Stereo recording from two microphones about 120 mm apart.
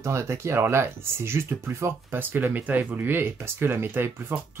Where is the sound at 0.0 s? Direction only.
25° right (ahead or behind).